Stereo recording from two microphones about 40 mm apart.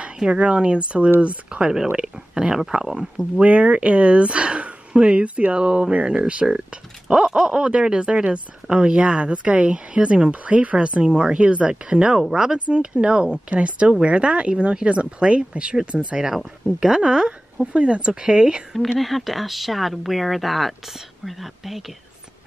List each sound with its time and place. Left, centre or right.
0.0 s speech: right
1.6 s a woman's voice: centre
3.3 s a woman's voice: right; by 12.5 s centre
12.5 s a woman's voice: right
17.7 s a woman's voice: right
18.9 s speech: centre